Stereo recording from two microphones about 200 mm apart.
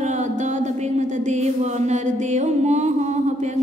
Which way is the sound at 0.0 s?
35° right (ahead or behind).